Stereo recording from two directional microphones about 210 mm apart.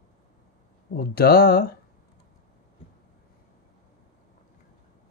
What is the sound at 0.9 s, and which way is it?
Speech, 50° left (ahead or behind).